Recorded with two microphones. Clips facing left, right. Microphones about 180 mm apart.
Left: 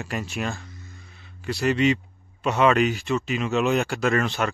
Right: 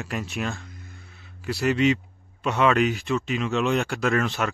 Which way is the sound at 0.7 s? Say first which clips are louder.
Even; 55° right (ahead or behind).